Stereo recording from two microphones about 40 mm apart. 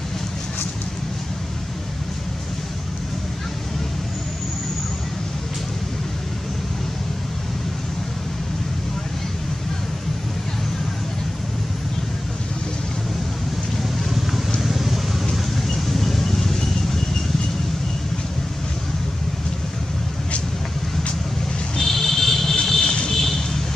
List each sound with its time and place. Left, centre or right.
13.8 s vehicle: centre
21.7 s vehicle: centre